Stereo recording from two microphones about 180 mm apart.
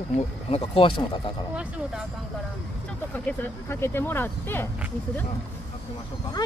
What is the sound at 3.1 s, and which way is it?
Speech, 10° left (ahead or behind).